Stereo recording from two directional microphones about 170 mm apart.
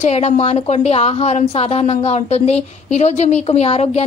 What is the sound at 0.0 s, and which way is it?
A woman's voice, 40° left (ahead or behind).